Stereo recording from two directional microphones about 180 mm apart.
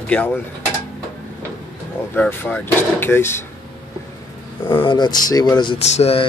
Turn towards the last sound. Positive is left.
turn(degrees=35)  # may be behind; listen again after turning